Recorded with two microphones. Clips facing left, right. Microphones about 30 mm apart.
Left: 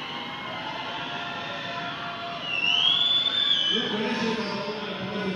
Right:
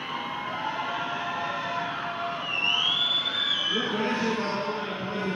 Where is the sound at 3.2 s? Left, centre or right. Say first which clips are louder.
Left 3 dB; left.